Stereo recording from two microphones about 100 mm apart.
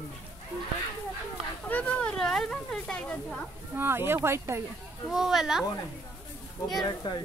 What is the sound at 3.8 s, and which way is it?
Speech, 25° right (ahead or behind).